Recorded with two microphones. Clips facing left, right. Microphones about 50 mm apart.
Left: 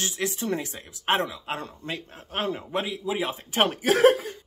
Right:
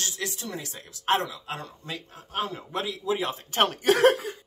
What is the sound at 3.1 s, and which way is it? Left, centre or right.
Speech, centre.